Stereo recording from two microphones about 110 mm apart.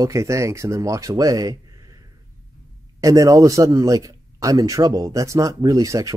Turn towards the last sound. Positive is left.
turn(degrees=-30)  # may be behind; listen again after turning